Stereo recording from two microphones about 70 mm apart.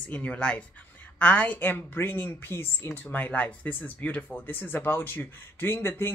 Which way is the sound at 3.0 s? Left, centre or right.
Left.